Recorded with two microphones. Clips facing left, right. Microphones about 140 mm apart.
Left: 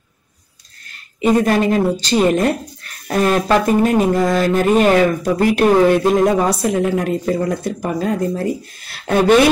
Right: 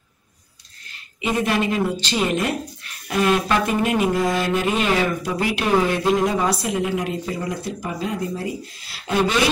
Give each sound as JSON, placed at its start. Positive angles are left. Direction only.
{"t": 1.2, "sound": "speech", "side_deg": 40}